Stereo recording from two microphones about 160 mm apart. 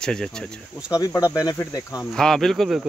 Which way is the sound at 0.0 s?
5° left (ahead or behind).